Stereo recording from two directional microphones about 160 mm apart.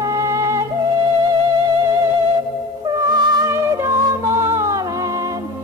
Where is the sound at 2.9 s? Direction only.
25° right (ahead or behind).